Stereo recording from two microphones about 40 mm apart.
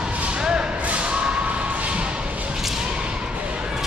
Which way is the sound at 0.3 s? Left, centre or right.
Right.